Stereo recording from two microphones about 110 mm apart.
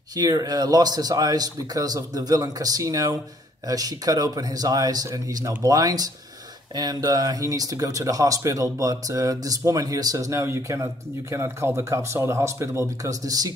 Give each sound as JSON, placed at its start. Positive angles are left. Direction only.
{"t": 0.1, "sound": "speech", "side_deg": -35}